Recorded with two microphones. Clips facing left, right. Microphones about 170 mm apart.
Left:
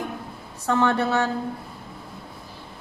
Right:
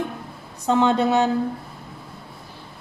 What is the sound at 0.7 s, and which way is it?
Speech, 20° right (ahead or behind).